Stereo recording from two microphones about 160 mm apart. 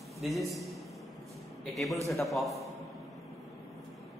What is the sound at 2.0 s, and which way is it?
Speech, 20° left (ahead or behind).